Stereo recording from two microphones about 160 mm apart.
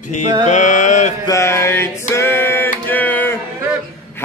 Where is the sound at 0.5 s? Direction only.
50° left (ahead or behind).